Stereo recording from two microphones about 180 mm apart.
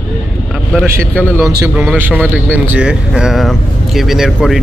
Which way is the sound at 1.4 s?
20° right (ahead or behind).